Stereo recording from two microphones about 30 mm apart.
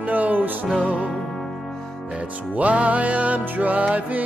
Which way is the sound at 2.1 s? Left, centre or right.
Right.